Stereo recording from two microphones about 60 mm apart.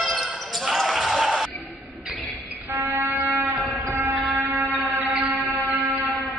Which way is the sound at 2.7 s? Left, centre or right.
Right.